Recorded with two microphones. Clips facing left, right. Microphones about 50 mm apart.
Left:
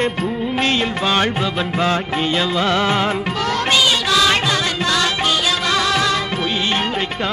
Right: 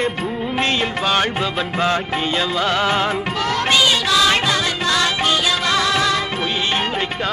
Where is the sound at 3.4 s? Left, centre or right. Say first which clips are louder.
Even; right.